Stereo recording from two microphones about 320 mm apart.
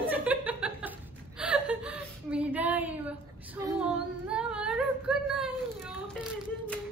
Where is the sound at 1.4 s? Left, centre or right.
Centre.